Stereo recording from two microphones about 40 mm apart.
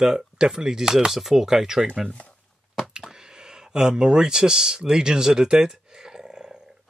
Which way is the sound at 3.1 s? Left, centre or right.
Centre.